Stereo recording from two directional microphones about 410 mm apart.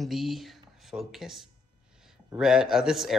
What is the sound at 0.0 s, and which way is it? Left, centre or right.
Speech, centre.